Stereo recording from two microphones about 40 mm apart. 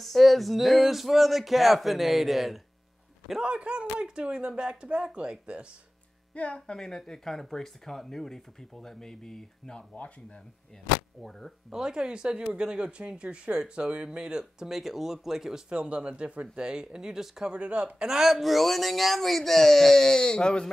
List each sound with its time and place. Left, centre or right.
0.0 s speech: centre
3.4 s speech: right
6.3 s speech: left
6.8 s speech: centre
9.8 s speech: left
11.1 s speech: centre
11.7 s speech: centre
14.6 s speech: centre
15.7 s speech: right
17.5 s speech: right
18.0 s speech: centre
18.4 s speech: centre; by 20.6 s left